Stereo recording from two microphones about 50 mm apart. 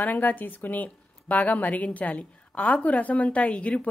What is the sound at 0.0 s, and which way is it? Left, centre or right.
A woman's voice, left.